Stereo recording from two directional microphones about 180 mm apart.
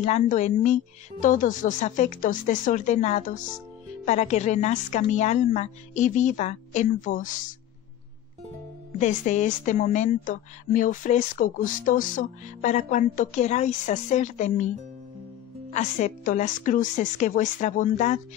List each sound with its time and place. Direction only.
0.0 s a woman's voice: 40° left (ahead or behind)
9.0 s speech: 40° left (ahead or behind)
15.7 s speech: 45° left (ahead or behind)